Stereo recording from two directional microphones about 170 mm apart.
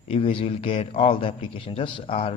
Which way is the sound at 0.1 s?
30° left (ahead or behind).